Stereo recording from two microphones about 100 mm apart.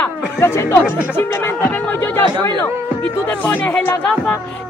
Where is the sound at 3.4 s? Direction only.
20° left (ahead or behind).